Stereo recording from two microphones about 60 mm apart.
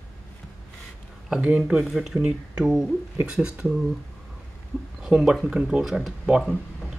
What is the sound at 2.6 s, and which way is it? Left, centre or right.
Speech, centre.